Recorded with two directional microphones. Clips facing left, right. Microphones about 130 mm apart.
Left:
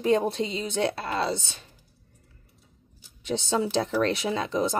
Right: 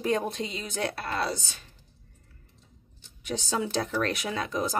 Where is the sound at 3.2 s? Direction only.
25° left (ahead or behind).